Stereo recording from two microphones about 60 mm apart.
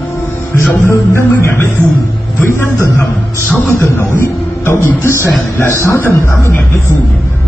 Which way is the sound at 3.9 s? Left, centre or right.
Left.